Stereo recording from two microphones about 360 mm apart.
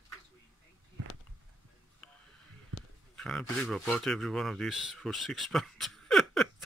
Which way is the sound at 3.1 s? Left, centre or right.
Centre.